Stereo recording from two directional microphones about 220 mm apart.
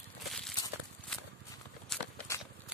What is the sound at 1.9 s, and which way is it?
Walk, 5° left (ahead or behind).